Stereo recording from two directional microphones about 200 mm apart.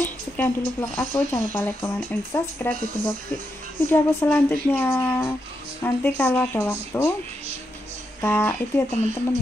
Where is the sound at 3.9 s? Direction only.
10° left (ahead or behind).